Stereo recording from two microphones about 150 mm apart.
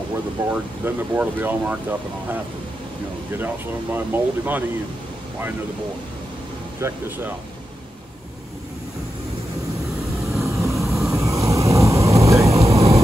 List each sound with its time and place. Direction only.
0.1 s speech: 15° right (ahead or behind)
6.8 s speech: 15° right (ahead or behind)
10.4 s vehicle: 20° right (ahead or behind)